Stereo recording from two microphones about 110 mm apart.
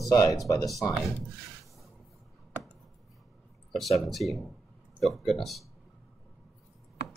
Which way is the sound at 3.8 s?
Centre (ahead or behind).